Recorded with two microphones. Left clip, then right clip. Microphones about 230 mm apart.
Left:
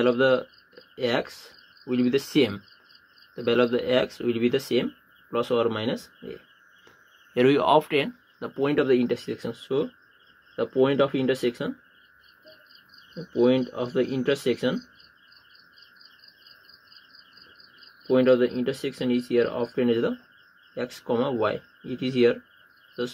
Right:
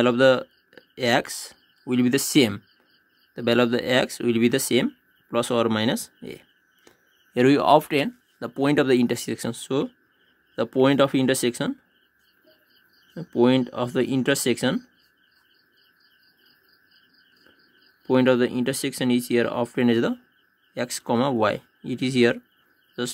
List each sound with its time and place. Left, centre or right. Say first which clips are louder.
0.0 s speech: right 3 dB; right
13.3 s speech: right 2 dB; right
18.0 s speech: even; right